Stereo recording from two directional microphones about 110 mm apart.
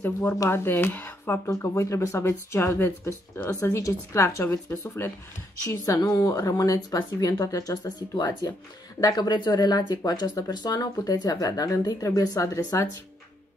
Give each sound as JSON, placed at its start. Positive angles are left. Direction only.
{"t": 0.0, "sound": "speech", "side_deg": 15}